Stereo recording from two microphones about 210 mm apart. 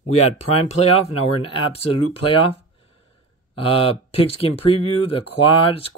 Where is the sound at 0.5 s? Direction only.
30° left (ahead or behind).